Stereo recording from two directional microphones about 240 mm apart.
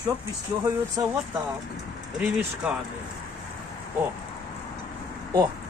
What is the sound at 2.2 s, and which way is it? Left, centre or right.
Speech, centre.